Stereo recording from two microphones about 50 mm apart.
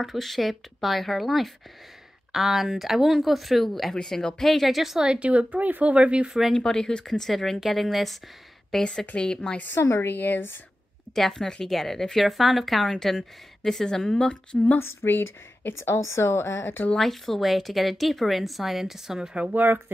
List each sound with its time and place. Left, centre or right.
0.0 s speech: centre
3.9 s a woman's voice: centre
4.5 s speech: centre
5.0 s speech: right
6.5 s a woman's voice: centre
9.8 s a woman's voice: left
10.1 s a woman's voice: left
11.1 s a woman's voice: centre
14.8 s a woman's voice: left
15.9 s a woman's voice: left
17.0 s speech: centre
19.5 s speech: right